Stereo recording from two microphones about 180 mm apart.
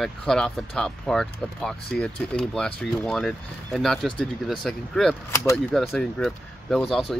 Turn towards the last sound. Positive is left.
turn(degrees=5)  # may be behind; listen again after turning